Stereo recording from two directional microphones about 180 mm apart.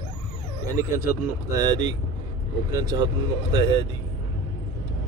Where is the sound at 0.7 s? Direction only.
15° right (ahead or behind).